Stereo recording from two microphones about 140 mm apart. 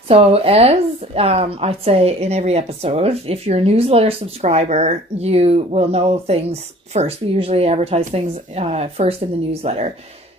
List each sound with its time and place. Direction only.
0.1 s a woman's voice: 45° right (ahead or behind)